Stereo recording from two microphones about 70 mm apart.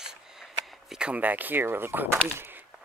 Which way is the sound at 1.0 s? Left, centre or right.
Right.